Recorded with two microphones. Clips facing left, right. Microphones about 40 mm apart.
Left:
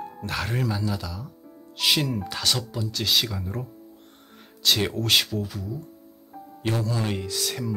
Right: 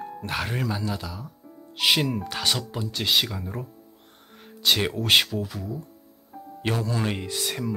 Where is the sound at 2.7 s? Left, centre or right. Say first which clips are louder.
Right 1 dB; right.